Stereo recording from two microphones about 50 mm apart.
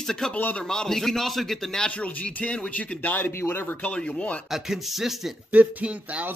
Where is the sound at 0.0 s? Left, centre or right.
Centre.